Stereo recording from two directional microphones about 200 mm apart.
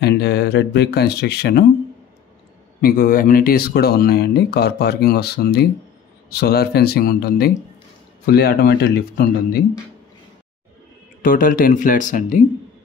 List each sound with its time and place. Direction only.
0.0 s speech: 55° left (ahead or behind)
2.8 s speech: 45° left (ahead or behind)
11.2 s speech: 40° left (ahead or behind)